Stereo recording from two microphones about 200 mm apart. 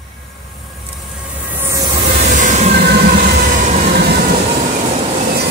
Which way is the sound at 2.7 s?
55° right (ahead or behind).